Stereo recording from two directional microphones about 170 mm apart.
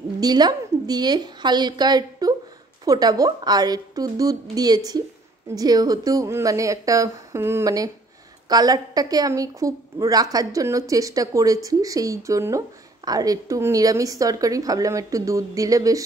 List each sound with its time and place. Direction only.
0.2 s a woman's voice: 25° right (ahead or behind)